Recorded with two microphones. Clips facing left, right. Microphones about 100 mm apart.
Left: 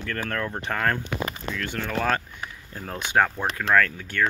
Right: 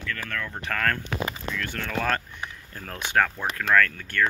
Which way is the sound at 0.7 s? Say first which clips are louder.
Left 1 dB; 15° left (ahead or behind).